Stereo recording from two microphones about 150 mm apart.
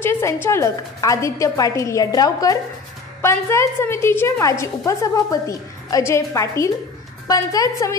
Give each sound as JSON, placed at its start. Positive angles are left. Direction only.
{"t": 0.0, "sound": "a woman's voice", "side_deg": 15}